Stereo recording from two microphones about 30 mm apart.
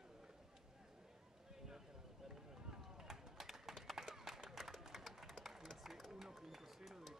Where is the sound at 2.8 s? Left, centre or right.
Centre.